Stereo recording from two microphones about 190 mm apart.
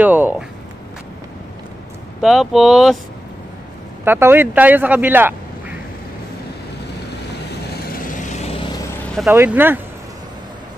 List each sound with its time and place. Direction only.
0.0 s speech: 10° right (ahead or behind)
2.2 s speech: centre (ahead or behind)
4.0 s speech: 10° right (ahead or behind)
7.9 s vehicle: 45° left (ahead or behind); by 8.8 s 25° left (ahead or behind)
9.0 s vehicle: 5° left (ahead or behind)
9.3 s speech: 10° right (ahead or behind)